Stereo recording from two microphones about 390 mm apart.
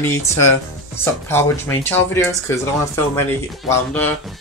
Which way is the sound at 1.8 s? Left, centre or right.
Centre.